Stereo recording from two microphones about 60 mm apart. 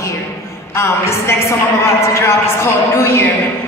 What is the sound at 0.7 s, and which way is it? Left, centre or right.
A woman's voice, left.